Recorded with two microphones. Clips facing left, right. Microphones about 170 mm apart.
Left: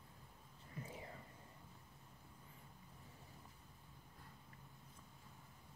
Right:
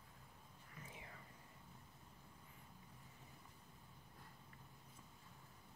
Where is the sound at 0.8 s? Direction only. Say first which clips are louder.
Left 7 dB; 35° left (ahead or behind).